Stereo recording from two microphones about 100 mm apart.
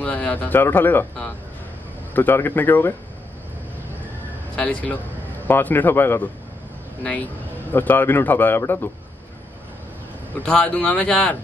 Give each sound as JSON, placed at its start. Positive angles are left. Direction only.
{"t": 0.0, "sound": "a man's voice", "side_deg": 15}
{"t": 2.1, "sound": "a man's voice", "side_deg": 20}
{"t": 4.6, "sound": "a man's voice", "side_deg": 15}
{"t": 10.3, "sound": "a man's voice", "side_deg": 10}